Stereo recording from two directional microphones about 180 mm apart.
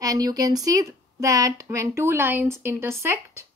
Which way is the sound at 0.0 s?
20° right (ahead or behind).